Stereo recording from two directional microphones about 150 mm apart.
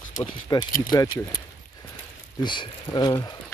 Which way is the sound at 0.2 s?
30° left (ahead or behind).